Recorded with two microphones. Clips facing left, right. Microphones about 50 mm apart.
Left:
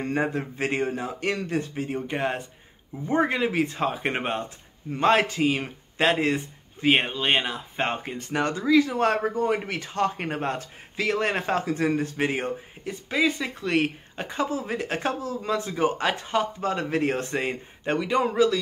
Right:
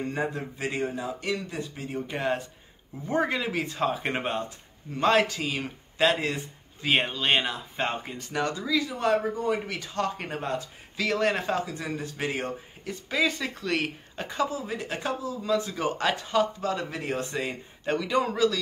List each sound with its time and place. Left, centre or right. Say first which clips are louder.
0.0 s speech: left 4 dB; left
2.0 s a man's voice: left 1 dB; left
7.0 s speech: left 1 dB; centre
7.7 s a man's voice: left 5 dB; left
11.0 s speech: left 1 dB; left
12.2 s a man's voice: left 4 dB; left
13.1 s speech: left 2 dB; centre
13.6 s a man's voice: left 4 dB; left
14.5 s speech: left 4 dB; left
17.9 s a man's voice: left 4 dB; left